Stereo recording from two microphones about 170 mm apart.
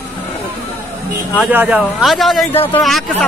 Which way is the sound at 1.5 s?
5° right (ahead or behind).